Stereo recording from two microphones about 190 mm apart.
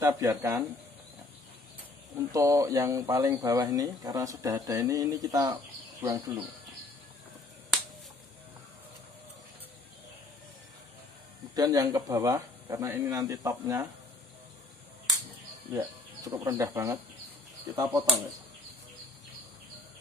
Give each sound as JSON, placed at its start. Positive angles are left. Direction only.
{"t": 0.0, "sound": "speech", "side_deg": -15}
{"t": 2.1, "sound": "speech", "side_deg": -15}
{"t": 11.5, "sound": "speech", "side_deg": -20}
{"t": 15.7, "sound": "speech", "side_deg": -20}